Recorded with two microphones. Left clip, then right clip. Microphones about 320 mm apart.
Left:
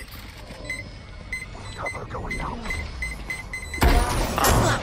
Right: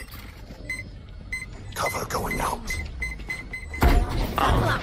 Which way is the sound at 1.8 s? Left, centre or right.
Right.